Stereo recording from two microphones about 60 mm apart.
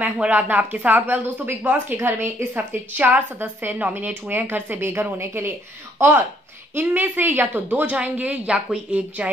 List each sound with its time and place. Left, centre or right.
0.0 s a woman's voice: right